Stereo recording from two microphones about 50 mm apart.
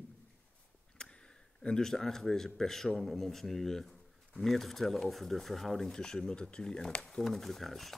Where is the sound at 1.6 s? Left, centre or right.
Centre.